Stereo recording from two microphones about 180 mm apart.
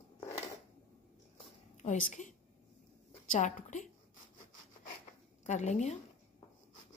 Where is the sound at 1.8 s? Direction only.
45° left (ahead or behind).